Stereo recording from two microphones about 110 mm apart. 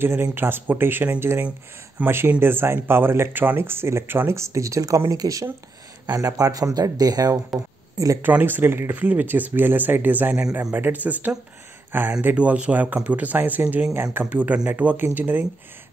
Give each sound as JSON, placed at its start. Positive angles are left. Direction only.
{"t": 0.0, "sound": "speech", "side_deg": -20}
{"t": 8.2, "sound": "speech", "side_deg": -15}